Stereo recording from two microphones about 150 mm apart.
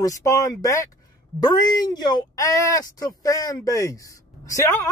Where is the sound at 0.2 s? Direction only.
20° left (ahead or behind).